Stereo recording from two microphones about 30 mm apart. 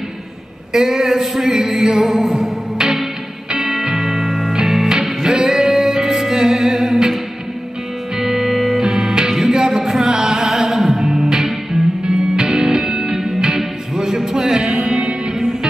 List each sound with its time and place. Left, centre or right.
0.7 s speech: centre
1.6 s music: right
8.2 s music: centre